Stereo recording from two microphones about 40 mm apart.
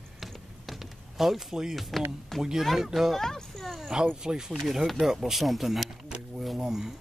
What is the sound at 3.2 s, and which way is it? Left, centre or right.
Speech, centre.